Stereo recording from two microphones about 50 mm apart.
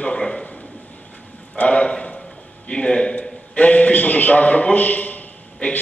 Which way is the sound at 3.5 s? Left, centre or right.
Left.